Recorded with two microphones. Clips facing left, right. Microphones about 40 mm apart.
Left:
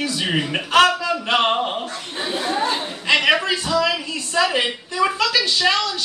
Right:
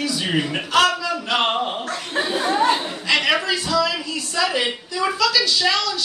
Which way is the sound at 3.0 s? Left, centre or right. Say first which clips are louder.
Left 3 dB; left.